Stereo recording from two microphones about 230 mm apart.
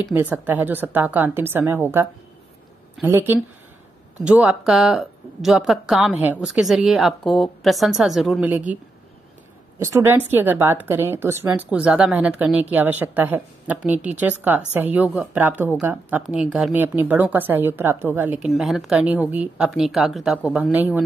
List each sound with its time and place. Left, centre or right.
0.1 s a woman's voice: centre
9.8 s a woman's voice: centre